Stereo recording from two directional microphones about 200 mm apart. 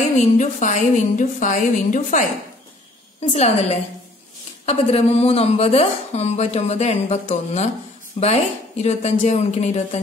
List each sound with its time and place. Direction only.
0.1 s a woman's voice: 35° left (ahead or behind)
4.6 s a woman's voice: 30° left (ahead or behind)